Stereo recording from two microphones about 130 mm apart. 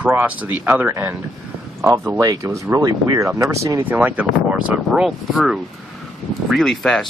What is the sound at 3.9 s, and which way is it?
Speech, 10° right (ahead or behind).